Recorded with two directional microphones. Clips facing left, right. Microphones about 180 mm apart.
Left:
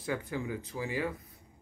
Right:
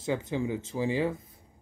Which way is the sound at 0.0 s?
20° right (ahead or behind).